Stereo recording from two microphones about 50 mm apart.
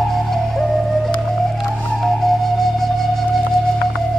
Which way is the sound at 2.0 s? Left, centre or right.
Centre.